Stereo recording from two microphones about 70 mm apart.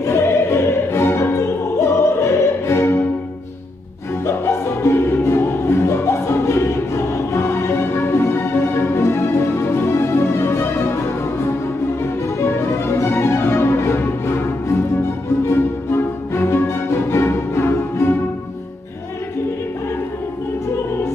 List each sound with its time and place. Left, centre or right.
0.0 s opera: left
4.3 s music: left
12.4 s music: left